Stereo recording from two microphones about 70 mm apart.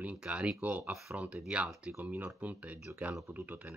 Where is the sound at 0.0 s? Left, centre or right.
Centre.